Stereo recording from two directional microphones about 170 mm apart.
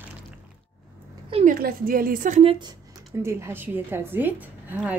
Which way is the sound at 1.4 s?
60° right (ahead or behind).